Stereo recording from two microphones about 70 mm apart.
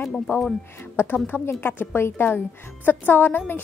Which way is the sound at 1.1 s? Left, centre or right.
Left.